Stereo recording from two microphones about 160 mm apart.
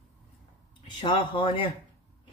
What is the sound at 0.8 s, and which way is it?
Speech, 30° left (ahead or behind).